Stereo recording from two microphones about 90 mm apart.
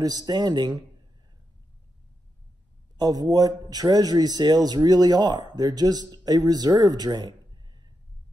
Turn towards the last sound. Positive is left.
turn(degrees=-50)  # may be behind; listen again after turning